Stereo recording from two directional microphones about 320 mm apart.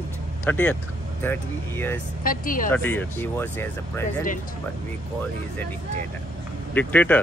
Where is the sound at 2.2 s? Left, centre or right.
Left.